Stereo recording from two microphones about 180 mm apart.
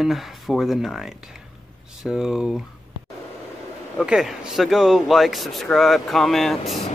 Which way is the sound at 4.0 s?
5° right (ahead or behind).